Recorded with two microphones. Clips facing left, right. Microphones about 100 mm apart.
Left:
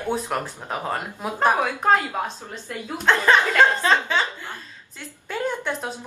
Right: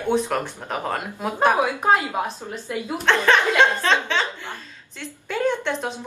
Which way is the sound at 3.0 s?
10° left (ahead or behind).